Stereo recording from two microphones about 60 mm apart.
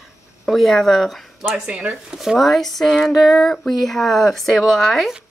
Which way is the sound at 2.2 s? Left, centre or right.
Centre.